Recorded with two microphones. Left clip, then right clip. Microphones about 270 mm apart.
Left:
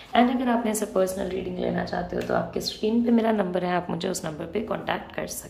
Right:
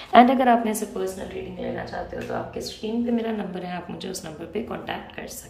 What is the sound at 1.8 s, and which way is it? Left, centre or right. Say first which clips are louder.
Speech: left 3 dB; left.